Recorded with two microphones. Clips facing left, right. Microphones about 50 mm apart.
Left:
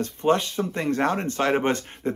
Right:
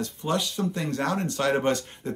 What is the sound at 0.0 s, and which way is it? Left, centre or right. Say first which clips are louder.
Speech: left 6 dB; left.